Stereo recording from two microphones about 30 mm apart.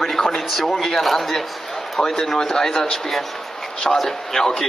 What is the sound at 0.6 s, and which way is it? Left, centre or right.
Speech, centre.